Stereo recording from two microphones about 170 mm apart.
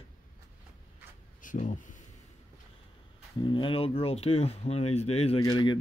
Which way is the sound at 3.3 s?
30° left (ahead or behind).